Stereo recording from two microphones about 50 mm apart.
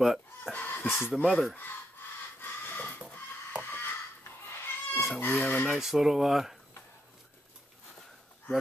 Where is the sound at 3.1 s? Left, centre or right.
Left.